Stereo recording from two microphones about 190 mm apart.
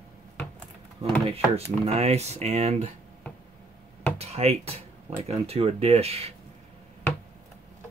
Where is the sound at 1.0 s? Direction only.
30° right (ahead or behind).